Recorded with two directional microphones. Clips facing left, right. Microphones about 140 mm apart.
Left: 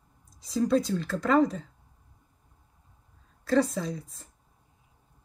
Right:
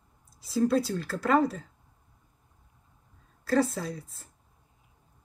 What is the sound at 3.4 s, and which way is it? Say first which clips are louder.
Speech: left 1 dB; 5° right (ahead or behind).